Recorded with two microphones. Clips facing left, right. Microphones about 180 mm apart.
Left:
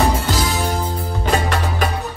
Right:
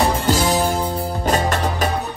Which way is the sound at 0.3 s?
40° right (ahead or behind).